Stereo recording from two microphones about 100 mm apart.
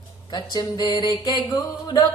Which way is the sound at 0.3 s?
45° left (ahead or behind).